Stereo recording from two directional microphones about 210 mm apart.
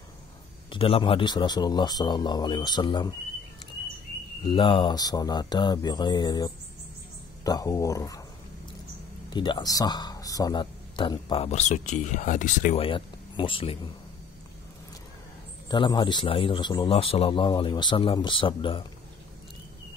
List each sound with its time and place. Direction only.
0.7 s speech: 25° left (ahead or behind)
4.5 s speech: 25° left (ahead or behind)
9.3 s speech: 20° left (ahead or behind)
15.7 s speech: 20° left (ahead or behind)